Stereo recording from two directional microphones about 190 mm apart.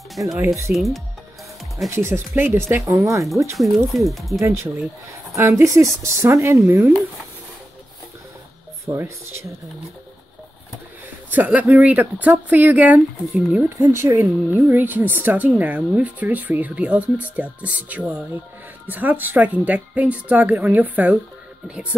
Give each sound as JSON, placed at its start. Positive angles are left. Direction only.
{"t": 0.1, "sound": "speech", "side_deg": 0}
{"t": 0.4, "sound": "speech", "side_deg": -15}
{"t": 0.7, "sound": "speech", "side_deg": 0}
{"t": 1.9, "sound": "speech", "side_deg": -15}
{"t": 3.5, "sound": "speech", "side_deg": 0}
{"t": 4.4, "sound": "speech", "side_deg": -15}
{"t": 8.8, "sound": "speech", "side_deg": -15}
{"t": 11.2, "sound": "speech", "side_deg": -10}